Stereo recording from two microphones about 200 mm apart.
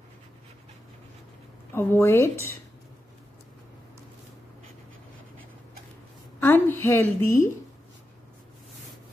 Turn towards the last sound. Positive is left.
turn(degrees=15)  # may be behind; listen again after turning